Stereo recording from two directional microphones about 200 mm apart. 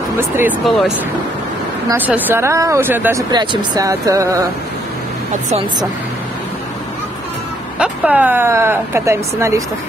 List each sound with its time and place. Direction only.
0.4 s speech: 5° right (ahead or behind)
7.8 s speech: 10° right (ahead or behind)